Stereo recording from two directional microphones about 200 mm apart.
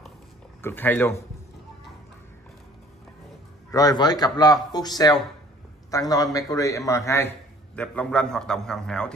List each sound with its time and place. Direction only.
0.6 s a man's voice: 10° left (ahead or behind)
3.7 s a man's voice: 20° left (ahead or behind); by 9.1 s 5° left (ahead or behind)